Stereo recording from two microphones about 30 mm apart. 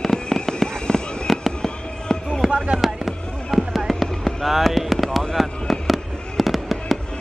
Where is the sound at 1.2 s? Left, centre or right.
Centre.